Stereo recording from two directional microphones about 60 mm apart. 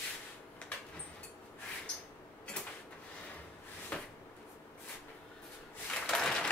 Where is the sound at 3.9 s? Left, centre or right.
Centre.